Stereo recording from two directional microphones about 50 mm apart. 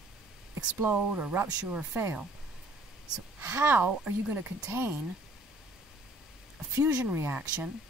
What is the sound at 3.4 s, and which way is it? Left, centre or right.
Speech, right.